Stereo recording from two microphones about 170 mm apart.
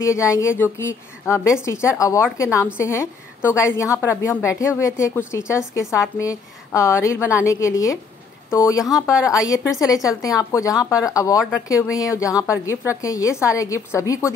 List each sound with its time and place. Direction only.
0.0 s a woman's voice: 15° left (ahead or behind)